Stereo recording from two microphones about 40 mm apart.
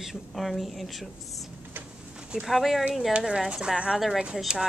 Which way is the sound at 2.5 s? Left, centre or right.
Centre.